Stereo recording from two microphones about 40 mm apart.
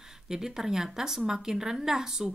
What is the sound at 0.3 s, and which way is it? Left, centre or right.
Speech, centre.